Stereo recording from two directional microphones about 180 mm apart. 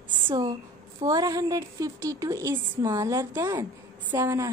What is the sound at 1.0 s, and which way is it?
A woman's voice, 20° right (ahead or behind).